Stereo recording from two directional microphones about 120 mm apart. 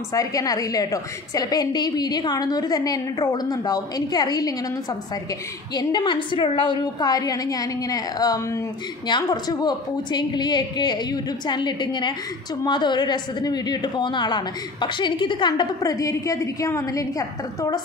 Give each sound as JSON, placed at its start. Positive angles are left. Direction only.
{"t": 0.1, "sound": "a woman's voice", "side_deg": 30}
{"t": 5.8, "sound": "a woman's voice", "side_deg": 35}